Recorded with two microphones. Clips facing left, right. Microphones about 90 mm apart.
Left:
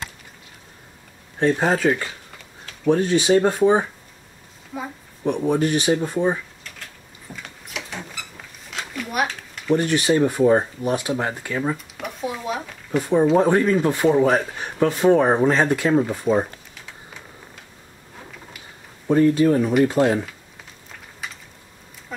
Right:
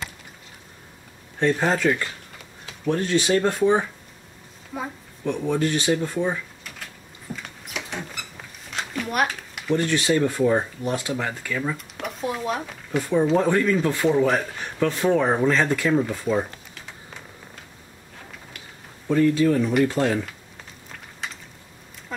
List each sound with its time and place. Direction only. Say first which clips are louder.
1.4 s speech: left 2 dB; 15° left (ahead or behind)
4.7 s speech: even; 5° right (ahead or behind)
5.2 s speech: left 3 dB; 15° left (ahead or behind)
7.4 s a sound: even; centre (ahead or behind)
9.7 s speech: left 3 dB; 15° left (ahead or behind)
11.7 s speech: left 2 dB; centre (ahead or behind)
13.0 s speech: left 3 dB; 20° left (ahead or behind)
19.0 s speech: left 3 dB; 30° left (ahead or behind)